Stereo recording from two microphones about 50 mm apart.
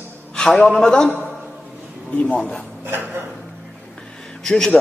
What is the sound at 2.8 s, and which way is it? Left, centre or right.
Speech, right.